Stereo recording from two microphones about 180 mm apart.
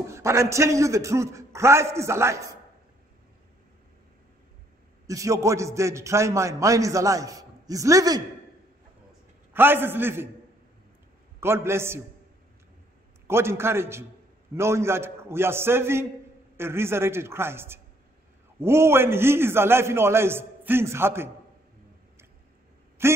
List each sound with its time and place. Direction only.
0.1 s a man's voice: 15° right (ahead or behind)
5.0 s a man's voice: 15° right (ahead or behind)
9.5 s a man's voice: 10° right (ahead or behind)
11.3 s a man's voice: 15° right (ahead or behind)
13.3 s a man's voice: 15° right (ahead or behind)
23.0 s a man's voice: 15° right (ahead or behind)